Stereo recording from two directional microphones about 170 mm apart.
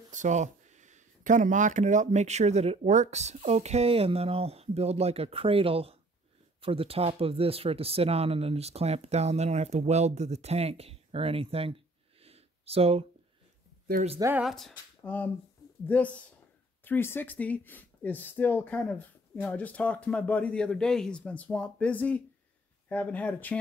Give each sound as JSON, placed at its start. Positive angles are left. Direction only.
{"t": 0.1, "sound": "speech", "side_deg": -45}
{"t": 14.4, "sound": "speech", "side_deg": 0}